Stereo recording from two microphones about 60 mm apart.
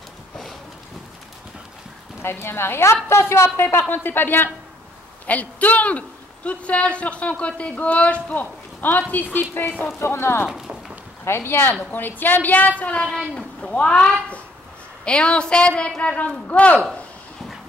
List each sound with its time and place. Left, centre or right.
2.2 s speech: left
5.2 s a man's voice: left
9.9 s speech: left
11.7 s a man's voice: left
13.3 s a sound: centre
13.7 s a woman's voice: centre